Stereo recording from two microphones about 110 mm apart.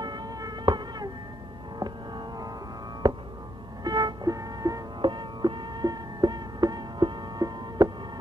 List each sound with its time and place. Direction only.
0.0 s a sound: 40° right (ahead or behind)
1.8 s music: 40° right (ahead or behind)
3.8 s music: 40° right (ahead or behind)
5.0 s music: 45° right (ahead or behind)